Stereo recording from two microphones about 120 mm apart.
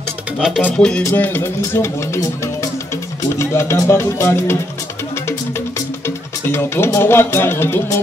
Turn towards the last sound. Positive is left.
turn(degrees=20)  # may be behind; listen again after turning